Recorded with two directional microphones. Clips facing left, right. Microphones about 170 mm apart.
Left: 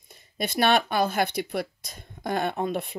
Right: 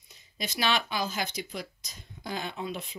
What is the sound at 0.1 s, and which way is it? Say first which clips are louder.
Speech: left 7 dB; 55° left (ahead or behind).